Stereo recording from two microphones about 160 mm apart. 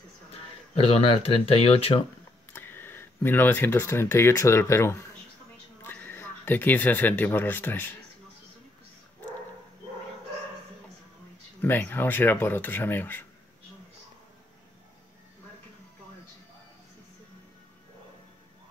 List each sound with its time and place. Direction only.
0.3 s speech: 40° left (ahead or behind)
2.5 s speech: 15° left (ahead or behind)
11.6 s speech: 10° left (ahead or behind)